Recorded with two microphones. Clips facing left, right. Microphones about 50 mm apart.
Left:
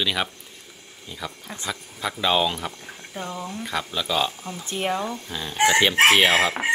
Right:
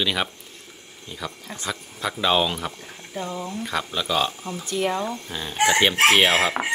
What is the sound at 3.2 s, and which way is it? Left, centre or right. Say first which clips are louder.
Speech: right 2 dB; centre.